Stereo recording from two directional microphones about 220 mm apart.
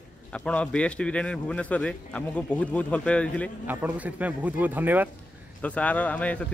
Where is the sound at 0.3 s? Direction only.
5° left (ahead or behind).